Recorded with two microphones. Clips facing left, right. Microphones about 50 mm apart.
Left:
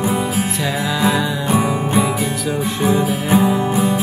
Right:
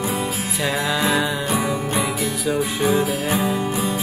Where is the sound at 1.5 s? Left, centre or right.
Centre.